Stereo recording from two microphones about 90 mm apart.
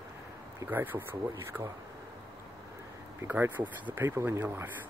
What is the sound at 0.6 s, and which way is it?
Speech, 20° right (ahead or behind).